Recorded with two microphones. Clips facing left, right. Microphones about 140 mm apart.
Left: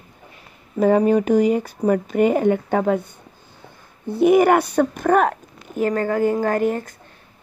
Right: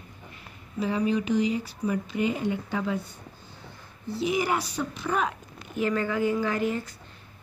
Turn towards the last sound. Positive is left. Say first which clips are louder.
# left 7 dB
turn(degrees=50)  # may be behind; listen again after turning